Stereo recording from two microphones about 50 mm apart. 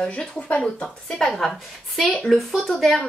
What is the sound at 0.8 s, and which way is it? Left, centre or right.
A woman's voice, centre.